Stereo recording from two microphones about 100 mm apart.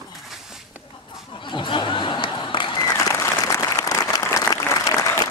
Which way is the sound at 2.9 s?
30° left (ahead or behind).